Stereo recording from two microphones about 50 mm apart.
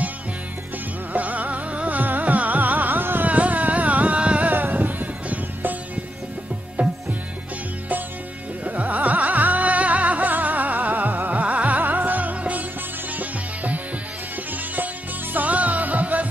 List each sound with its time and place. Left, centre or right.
1.1 s music: right
3.3 s a sound: right
4.5 s music: right
6.8 s music: right
8.6 s music: right
15.3 s music: right